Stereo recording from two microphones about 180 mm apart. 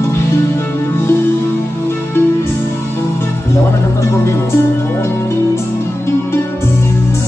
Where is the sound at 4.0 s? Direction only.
15° left (ahead or behind).